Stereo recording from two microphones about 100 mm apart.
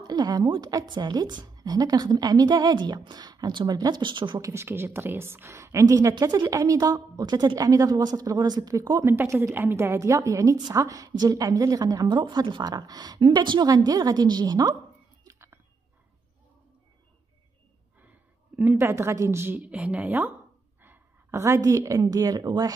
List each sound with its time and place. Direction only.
0.0 s a woman's voice: 45° right (ahead or behind)
4.4 s a woman's voice: 30° right (ahead or behind)
9.0 s a woman's voice: 25° right (ahead or behind); by 14.8 s 40° right (ahead or behind)
15.2 s a sound: 25° right (ahead or behind)
18.6 s a woman's voice: 20° right (ahead or behind); by 22.8 s 40° right (ahead or behind)